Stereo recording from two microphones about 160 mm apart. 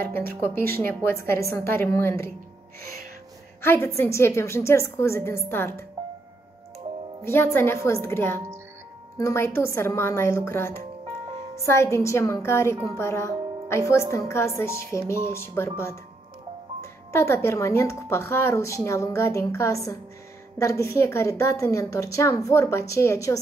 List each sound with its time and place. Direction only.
0.6 s a woman's voice: 15° left (ahead or behind)
3.6 s a woman's voice: 15° left (ahead or behind)
7.2 s a woman's voice: 15° left (ahead or behind)